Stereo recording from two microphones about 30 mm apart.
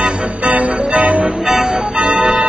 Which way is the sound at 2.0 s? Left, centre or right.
Right.